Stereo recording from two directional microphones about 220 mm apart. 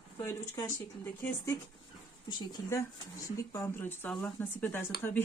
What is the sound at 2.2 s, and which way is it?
Speech, 20° left (ahead or behind).